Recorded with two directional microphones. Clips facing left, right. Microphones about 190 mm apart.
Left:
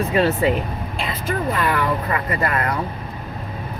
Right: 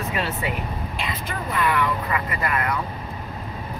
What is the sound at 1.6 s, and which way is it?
Speech, 40° left (ahead or behind).